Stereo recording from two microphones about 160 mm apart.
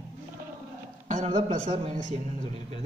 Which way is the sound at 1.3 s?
35° right (ahead or behind).